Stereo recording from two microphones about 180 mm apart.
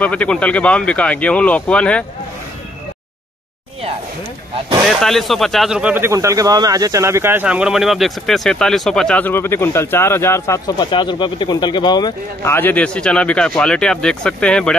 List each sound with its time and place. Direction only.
0.0 s speech: 5° left (ahead or behind)
4.8 s speech: centre (ahead or behind)
10.9 s speech: 25° left (ahead or behind)
12.5 s speech: 10° left (ahead or behind)